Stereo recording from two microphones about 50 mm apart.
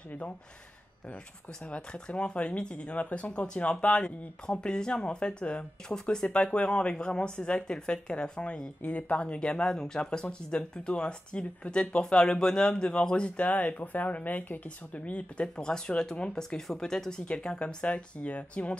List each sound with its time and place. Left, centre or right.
1.7 s speech: centre
4.0 s speech: centre
15.4 s speech: centre